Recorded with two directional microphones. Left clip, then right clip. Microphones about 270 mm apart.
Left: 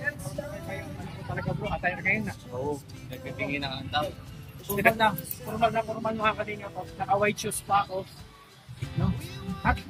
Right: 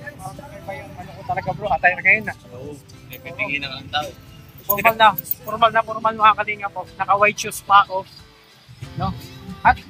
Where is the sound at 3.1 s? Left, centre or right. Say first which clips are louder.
Right 7 dB; centre.